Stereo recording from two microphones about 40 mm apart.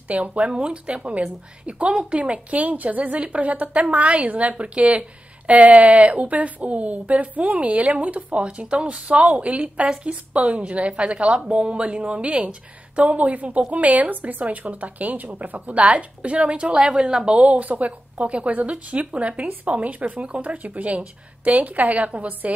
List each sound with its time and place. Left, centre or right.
0.1 s a woman's voice: right
17.4 s a woman's voice: right